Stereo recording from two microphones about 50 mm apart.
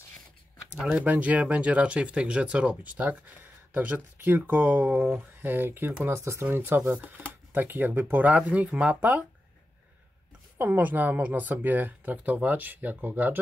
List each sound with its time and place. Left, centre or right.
1.0 s speech: right
6.0 s speech: right
6.4 s speech: right
8.4 s speech: right
10.6 s speech: right